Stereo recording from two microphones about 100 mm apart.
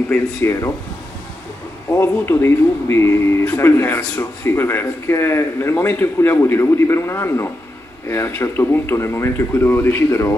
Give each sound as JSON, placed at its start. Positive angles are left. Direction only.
{"t": 0.4, "sound": "speech", "side_deg": 30}
{"t": 2.0, "sound": "speech", "side_deg": 25}